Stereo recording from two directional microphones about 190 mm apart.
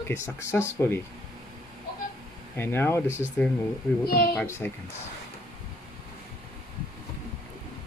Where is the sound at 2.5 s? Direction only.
10° left (ahead or behind).